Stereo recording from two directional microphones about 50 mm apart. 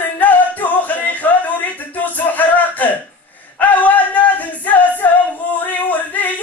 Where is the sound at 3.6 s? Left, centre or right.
Left.